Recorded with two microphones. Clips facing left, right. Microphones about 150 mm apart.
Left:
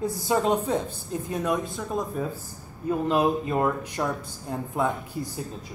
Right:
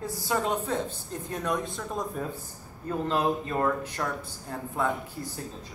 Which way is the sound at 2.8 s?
15° left (ahead or behind).